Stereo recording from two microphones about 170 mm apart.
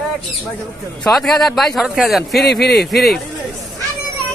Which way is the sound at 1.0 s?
Centre (ahead or behind).